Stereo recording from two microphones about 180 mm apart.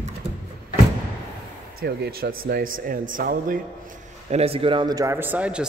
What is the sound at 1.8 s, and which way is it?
Speech, 60° right (ahead or behind).